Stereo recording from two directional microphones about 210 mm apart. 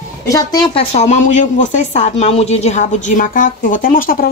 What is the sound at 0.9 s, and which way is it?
A woman's voice, 35° left (ahead or behind).